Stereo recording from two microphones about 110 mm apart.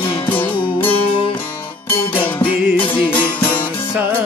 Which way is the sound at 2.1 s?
15° left (ahead or behind).